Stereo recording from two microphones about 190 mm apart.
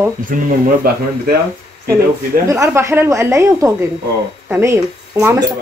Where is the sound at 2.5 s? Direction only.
15° right (ahead or behind).